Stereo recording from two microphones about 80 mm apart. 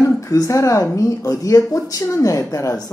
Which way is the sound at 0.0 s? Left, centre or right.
Left.